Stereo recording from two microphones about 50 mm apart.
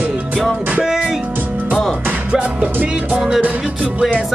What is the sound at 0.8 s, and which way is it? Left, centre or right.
Music, centre.